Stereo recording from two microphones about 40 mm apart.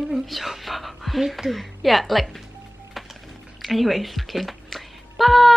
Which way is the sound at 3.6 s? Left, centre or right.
Centre.